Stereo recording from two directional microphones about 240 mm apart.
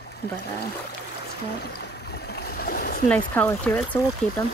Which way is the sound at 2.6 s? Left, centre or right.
Left.